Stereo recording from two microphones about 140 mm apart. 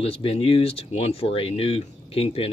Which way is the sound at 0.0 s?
40° left (ahead or behind).